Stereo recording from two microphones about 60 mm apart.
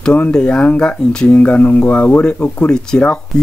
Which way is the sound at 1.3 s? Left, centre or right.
Left.